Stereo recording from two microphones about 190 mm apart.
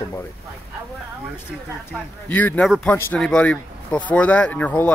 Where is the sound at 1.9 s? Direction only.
10° left (ahead or behind).